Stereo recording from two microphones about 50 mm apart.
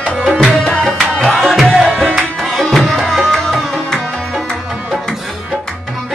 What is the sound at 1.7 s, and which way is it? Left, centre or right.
Tabla, right.